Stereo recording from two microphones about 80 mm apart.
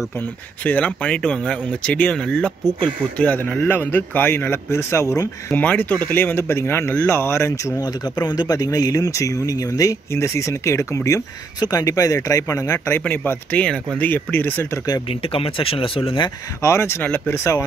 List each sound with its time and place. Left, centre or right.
0.7 s speech: centre; by 5.3 s left
5.5 s speech: left
7.8 s speech: left
10.1 s speech: left
11.6 s speech: left
12.8 s speech: left
15.5 s speech: left
16.6 s speech: left